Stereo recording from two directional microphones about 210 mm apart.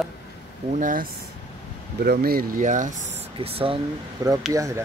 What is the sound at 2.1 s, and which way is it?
Speech, 45° right (ahead or behind).